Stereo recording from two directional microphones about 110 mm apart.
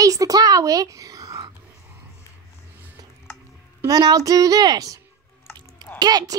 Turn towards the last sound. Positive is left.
turn(degrees=-35)  # may be behind; listen again after turning